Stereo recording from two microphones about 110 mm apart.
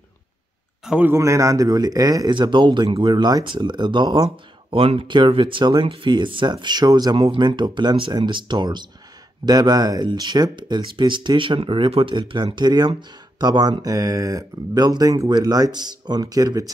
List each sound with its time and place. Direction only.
0.8 s a man's voice: 10° right (ahead or behind)
1.1 s speech: 30° right (ahead or behind)